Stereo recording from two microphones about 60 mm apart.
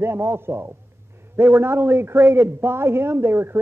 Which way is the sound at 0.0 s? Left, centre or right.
Right.